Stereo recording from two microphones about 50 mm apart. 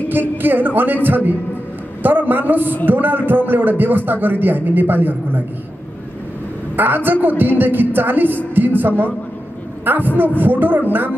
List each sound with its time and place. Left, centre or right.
0.1 s a man's voice: right
6.8 s a man's voice: right